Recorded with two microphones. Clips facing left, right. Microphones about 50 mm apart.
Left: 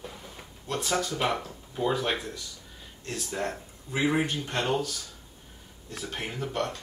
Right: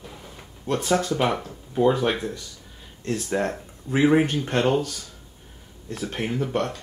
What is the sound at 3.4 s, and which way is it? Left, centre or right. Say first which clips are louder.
Speech: right 6 dB; right.